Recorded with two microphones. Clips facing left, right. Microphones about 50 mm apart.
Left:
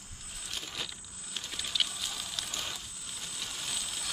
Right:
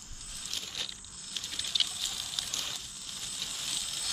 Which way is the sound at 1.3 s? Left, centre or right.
Centre.